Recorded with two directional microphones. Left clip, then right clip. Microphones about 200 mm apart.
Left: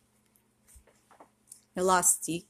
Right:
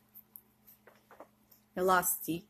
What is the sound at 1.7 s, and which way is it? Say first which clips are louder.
Speech: left 3 dB; 25° left (ahead or behind).